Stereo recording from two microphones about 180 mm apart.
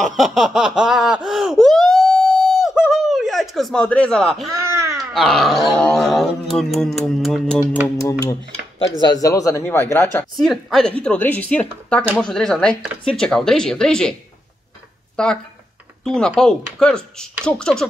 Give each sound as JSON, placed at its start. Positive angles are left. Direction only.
{"t": 0.0, "sound": "a sound", "side_deg": 0}
{"t": 4.6, "sound": "a sound", "side_deg": -15}
{"t": 5.1, "sound": "dog", "side_deg": 0}
{"t": 9.0, "sound": "speech", "side_deg": 20}
{"t": 10.3, "sound": "speech", "side_deg": 0}
{"t": 12.2, "sound": "dog", "side_deg": 5}
{"t": 15.2, "sound": "dog", "side_deg": 5}